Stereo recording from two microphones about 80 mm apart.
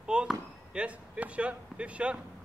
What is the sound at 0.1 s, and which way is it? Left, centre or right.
Speech, centre.